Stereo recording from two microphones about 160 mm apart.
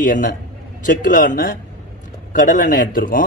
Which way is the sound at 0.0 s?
55° left (ahead or behind).